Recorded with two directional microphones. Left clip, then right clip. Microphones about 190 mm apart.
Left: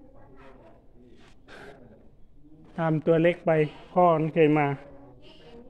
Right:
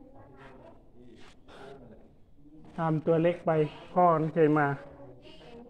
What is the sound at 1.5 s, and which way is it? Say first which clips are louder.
Gasp: left 3 dB; 35° left (ahead or behind).